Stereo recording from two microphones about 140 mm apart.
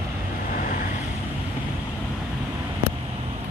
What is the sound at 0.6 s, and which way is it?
Vehicle, 65° left (ahead or behind).